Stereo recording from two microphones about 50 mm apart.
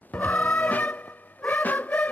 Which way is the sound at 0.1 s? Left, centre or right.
Left.